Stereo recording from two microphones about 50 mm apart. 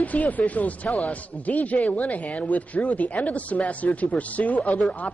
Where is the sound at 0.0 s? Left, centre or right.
Left.